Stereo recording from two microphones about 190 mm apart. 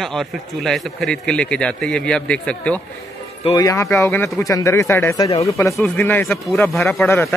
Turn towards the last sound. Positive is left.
turn(degrees=10)  # may be behind; listen again after turning